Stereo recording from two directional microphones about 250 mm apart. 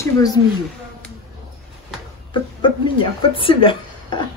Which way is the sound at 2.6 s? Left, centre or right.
Centre.